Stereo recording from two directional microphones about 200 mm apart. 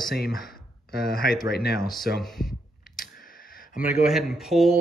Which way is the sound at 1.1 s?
50° left (ahead or behind).